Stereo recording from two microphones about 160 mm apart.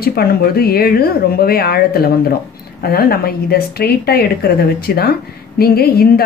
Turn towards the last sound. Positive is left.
turn(degrees=75)  # may be behind; listen again after turning